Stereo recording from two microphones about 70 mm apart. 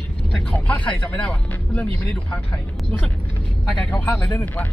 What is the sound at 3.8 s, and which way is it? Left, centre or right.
Speech, centre.